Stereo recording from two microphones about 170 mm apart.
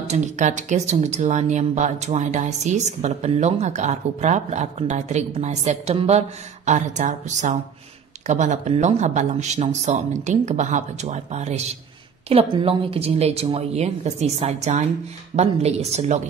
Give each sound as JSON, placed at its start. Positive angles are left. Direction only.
{"t": 0.1, "sound": "speech", "side_deg": -45}